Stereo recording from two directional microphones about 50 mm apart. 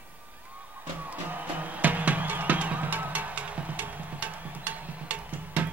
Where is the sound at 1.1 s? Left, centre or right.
Right.